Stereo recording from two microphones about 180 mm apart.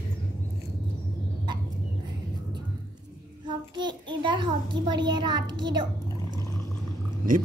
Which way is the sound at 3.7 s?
25° right (ahead or behind).